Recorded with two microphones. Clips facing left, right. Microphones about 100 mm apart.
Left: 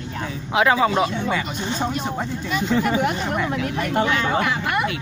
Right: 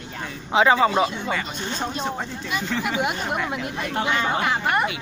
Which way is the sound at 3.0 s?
10° right (ahead or behind).